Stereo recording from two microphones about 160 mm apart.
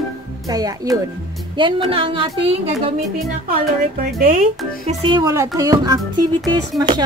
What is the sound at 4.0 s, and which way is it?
Speech, 55° right (ahead or behind).